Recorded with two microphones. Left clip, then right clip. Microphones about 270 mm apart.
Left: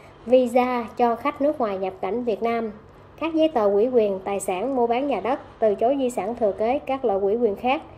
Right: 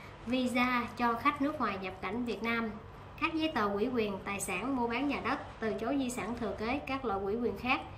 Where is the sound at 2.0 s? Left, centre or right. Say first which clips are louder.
Left 12 dB; left.